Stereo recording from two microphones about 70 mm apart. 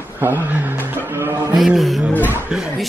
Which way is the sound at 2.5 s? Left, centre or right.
Centre.